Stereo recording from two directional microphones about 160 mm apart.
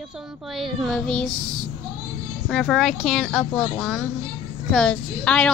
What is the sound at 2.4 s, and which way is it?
A woman's voice, centre (ahead or behind).